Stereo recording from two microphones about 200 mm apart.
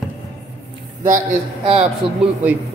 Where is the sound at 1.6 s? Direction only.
30° right (ahead or behind).